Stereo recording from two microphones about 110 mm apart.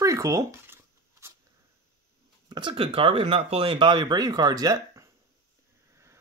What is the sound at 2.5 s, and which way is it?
Speech, 45° right (ahead or behind).